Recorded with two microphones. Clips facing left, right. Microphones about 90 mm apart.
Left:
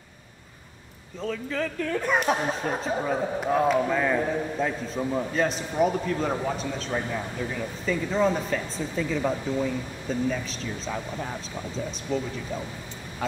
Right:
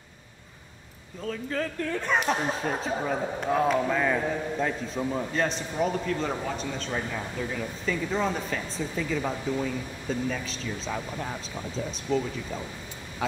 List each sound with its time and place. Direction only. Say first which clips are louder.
1.2 s speech: left 1 dB; centre (ahead or behind)